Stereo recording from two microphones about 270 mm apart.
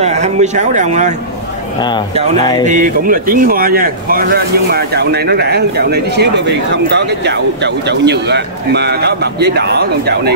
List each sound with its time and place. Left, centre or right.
0.0 s speech: right
1.8 s speech: centre
2.6 s speech: right